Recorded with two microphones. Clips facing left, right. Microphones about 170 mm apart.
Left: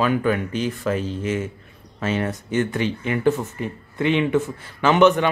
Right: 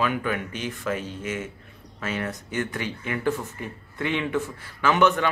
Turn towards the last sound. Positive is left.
turn(degrees=20)  # may be behind; listen again after turning